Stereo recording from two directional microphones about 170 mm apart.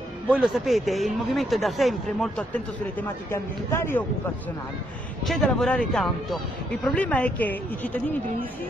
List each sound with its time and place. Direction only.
0.3 s speech: centre (ahead or behind); by 4.0 s 15° left (ahead or behind)
5.2 s speech: centre (ahead or behind)